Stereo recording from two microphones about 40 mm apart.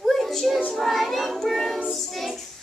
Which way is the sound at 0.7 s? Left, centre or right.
Centre.